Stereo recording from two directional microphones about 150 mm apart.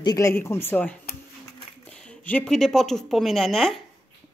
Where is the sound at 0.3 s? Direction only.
15° left (ahead or behind).